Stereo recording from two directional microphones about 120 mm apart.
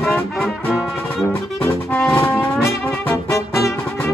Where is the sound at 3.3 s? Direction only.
25° left (ahead or behind).